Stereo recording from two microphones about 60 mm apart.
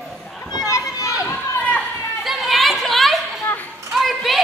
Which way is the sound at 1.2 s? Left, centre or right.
Left.